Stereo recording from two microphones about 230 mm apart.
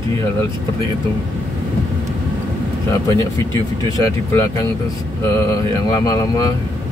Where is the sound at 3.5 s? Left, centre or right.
Centre.